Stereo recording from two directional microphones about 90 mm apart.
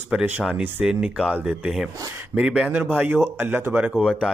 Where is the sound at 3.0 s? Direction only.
25° right (ahead or behind).